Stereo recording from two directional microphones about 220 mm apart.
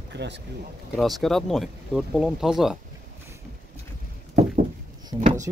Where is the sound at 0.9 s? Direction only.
Centre (ahead or behind).